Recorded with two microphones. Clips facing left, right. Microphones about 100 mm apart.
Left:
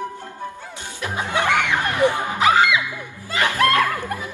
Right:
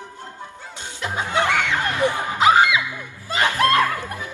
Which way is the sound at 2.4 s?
20° right (ahead or behind).